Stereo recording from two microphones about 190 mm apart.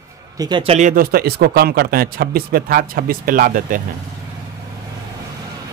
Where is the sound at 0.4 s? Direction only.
25° right (ahead or behind); by 3.8 s 50° right (ahead or behind).